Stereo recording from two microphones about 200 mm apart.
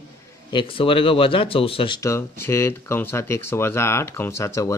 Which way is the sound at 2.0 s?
15° left (ahead or behind).